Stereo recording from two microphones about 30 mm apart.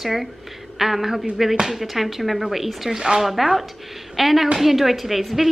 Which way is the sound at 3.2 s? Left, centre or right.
Centre.